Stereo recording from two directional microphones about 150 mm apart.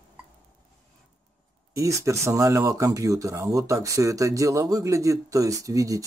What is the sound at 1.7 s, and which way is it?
Speech, 20° right (ahead or behind).